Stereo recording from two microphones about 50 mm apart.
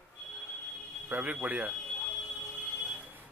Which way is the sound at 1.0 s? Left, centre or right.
Right.